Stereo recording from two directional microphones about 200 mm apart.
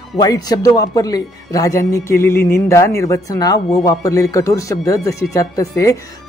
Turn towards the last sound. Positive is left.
turn(degrees=15)  # may be behind; listen again after turning